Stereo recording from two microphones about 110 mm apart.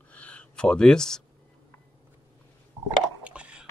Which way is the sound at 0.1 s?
10° left (ahead or behind).